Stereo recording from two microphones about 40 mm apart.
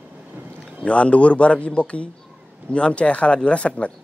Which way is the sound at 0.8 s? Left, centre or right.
Left.